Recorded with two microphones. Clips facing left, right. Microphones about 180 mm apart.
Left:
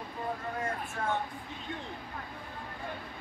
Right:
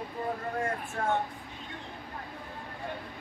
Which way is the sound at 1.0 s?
50° right (ahead or behind).